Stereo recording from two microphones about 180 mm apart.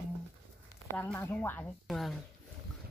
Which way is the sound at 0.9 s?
10° left (ahead or behind).